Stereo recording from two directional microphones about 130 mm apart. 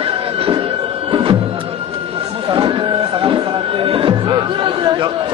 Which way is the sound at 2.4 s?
40° right (ahead or behind).